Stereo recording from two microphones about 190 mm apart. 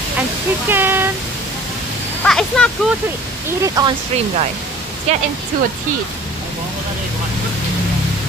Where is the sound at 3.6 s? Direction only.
20° right (ahead or behind).